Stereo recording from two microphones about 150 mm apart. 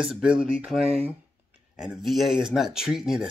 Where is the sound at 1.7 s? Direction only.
5° right (ahead or behind).